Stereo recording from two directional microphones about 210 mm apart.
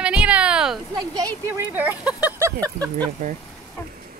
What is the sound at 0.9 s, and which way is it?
Speech, 15° right (ahead or behind).